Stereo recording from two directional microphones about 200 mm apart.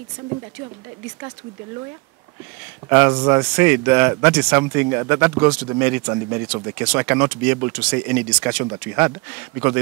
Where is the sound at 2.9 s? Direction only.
15° right (ahead or behind).